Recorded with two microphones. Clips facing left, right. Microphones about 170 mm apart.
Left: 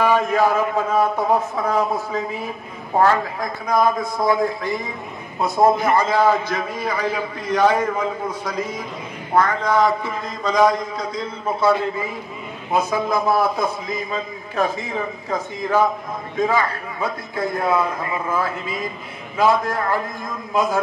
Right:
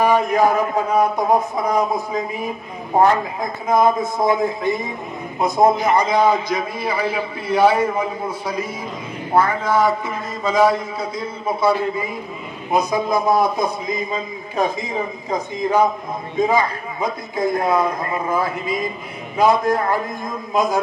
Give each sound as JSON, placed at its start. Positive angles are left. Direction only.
{"t": 0.0, "sound": "a man's voice", "side_deg": -15}
{"t": 12.7, "sound": "a man's voice", "side_deg": -15}
{"t": 19.3, "sound": "a man's voice", "side_deg": -15}